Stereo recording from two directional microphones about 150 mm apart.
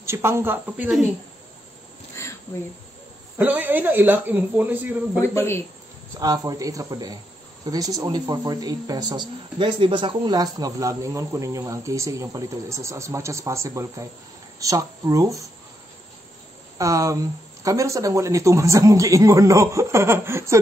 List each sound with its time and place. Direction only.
0.0 s speech: 15° right (ahead or behind)
3.3 s speech: 10° right (ahead or behind)
5.2 s speech: 15° left (ahead or behind)
6.1 s speech: 25° right (ahead or behind)
16.7 s speech: 20° right (ahead or behind)